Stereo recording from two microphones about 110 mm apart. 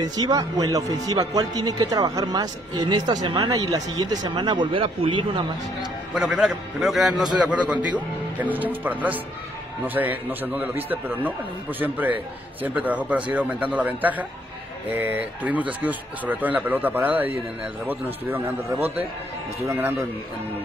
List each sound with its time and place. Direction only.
0.0 s speech: 35° right (ahead or behind)
6.1 s a man's voice: 5° right (ahead or behind)